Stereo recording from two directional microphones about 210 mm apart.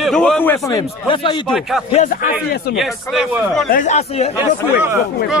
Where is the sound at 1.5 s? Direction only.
Centre (ahead or behind).